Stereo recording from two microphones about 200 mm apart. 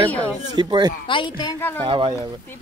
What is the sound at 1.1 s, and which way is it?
Speech, 25° left (ahead or behind).